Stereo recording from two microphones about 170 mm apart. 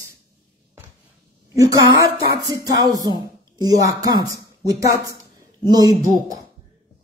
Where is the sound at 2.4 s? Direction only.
20° right (ahead or behind).